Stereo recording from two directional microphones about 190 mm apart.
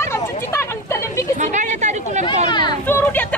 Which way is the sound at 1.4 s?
40° right (ahead or behind).